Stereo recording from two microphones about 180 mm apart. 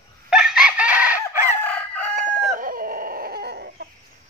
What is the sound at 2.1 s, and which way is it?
Chicken, 50° right (ahead or behind).